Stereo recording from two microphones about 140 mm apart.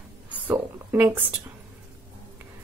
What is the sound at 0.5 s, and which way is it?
Speech, 10° right (ahead or behind).